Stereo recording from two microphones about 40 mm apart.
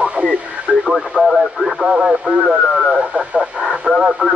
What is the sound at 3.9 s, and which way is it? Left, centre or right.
Radio, centre.